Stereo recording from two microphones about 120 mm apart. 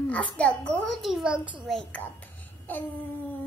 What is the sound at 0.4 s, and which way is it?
A child's voice, 10° left (ahead or behind).